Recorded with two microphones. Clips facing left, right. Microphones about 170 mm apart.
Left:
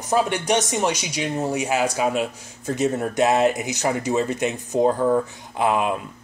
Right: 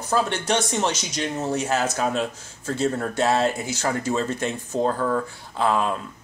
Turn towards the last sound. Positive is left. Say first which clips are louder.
# left 1 dB
turn(degrees=15)  # may be behind; listen again after turning